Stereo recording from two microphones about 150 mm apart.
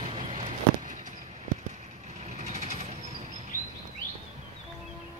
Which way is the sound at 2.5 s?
50° right (ahead or behind).